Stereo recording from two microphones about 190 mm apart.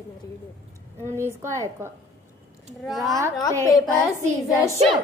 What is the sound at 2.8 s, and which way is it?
Speech, centre (ahead or behind).